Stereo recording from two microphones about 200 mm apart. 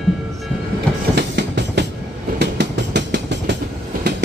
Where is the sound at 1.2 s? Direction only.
60° right (ahead or behind).